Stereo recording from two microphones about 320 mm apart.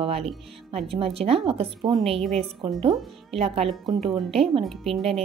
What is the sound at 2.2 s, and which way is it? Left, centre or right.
Speech, centre.